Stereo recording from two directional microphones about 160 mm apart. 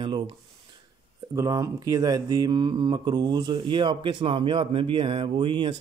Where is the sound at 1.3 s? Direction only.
20° right (ahead or behind).